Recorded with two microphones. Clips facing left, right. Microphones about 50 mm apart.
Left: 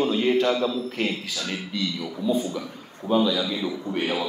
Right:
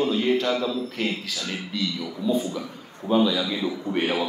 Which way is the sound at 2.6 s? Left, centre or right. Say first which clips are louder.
Even; centre.